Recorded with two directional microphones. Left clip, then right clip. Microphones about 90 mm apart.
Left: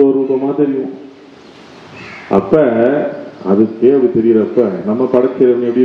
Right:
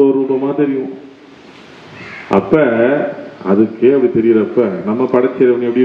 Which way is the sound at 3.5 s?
35° right (ahead or behind).